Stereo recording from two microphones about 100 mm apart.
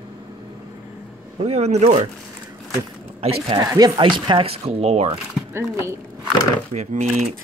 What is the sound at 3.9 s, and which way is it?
Speech, 55° right (ahead or behind).